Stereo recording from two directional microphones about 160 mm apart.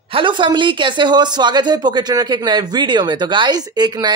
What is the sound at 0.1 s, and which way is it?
Speech, 30° right (ahead or behind).